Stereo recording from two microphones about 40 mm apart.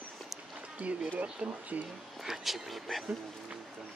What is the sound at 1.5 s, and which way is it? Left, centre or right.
Speech, right.